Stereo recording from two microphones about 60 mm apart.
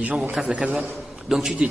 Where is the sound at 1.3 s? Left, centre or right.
Centre.